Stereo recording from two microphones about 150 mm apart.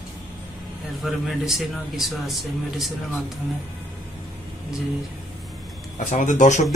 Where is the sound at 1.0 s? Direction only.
Centre (ahead or behind).